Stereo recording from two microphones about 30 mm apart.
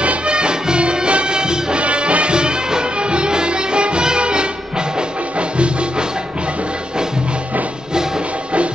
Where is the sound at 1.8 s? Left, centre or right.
Right.